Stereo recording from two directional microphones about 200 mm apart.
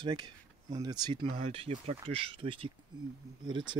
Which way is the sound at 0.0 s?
25° right (ahead or behind).